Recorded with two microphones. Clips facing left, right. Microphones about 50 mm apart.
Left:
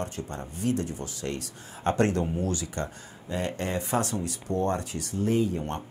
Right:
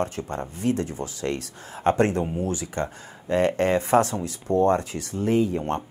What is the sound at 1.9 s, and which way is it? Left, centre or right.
Speech, right.